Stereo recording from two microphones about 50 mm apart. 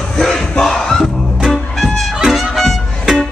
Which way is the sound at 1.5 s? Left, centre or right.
Centre.